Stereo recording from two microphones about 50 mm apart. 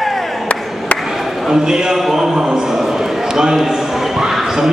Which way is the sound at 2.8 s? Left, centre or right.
Centre.